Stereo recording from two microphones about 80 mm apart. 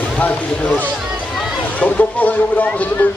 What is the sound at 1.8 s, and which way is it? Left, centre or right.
Speech, centre.